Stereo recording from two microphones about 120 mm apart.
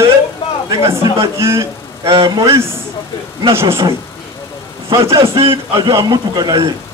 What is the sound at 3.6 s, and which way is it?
Speech, 30° right (ahead or behind).